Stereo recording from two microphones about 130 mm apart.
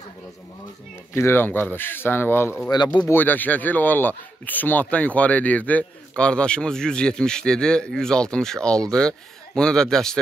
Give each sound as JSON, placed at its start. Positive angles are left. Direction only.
{"t": 1.1, "sound": "speech", "side_deg": 20}
{"t": 2.7, "sound": "speech", "side_deg": 30}
{"t": 3.1, "sound": "speech", "side_deg": 15}